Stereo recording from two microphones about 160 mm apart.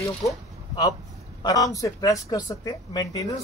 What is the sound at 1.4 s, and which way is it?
Speech, 20° left (ahead or behind).